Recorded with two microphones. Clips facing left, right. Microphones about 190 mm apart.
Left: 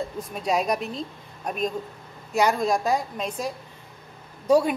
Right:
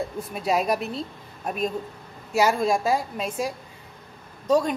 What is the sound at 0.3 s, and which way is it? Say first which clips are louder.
A woman's voice: right 1 dB; 5° right (ahead or behind).